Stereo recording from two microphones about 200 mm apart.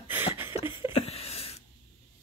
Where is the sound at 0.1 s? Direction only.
10° right (ahead or behind).